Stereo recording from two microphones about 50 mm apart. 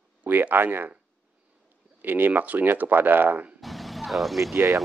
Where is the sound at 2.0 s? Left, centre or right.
Right.